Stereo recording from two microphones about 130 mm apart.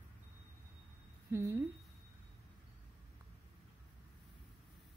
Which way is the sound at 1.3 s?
20° right (ahead or behind).